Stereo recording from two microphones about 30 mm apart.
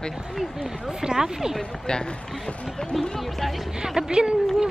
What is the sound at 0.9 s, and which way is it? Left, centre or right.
Speech, centre.